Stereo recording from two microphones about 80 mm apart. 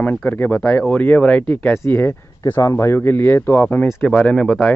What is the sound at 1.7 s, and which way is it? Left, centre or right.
Speech, left.